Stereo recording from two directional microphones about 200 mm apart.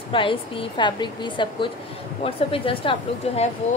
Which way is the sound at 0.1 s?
25° left (ahead or behind).